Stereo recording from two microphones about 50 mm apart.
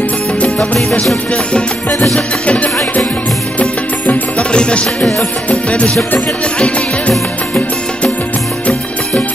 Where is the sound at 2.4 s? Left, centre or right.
Left.